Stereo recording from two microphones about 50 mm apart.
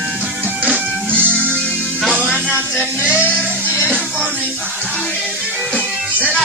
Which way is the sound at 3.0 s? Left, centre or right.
Right.